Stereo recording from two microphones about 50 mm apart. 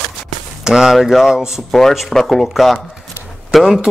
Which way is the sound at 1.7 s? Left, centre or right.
Centre.